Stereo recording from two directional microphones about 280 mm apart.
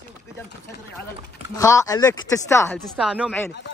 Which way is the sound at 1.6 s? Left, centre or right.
Centre.